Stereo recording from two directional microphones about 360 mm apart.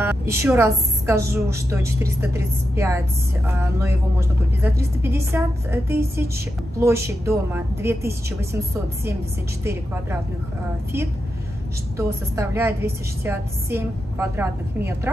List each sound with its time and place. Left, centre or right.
0.0 s a woman's voice: centre
12.0 s a woman's voice: centre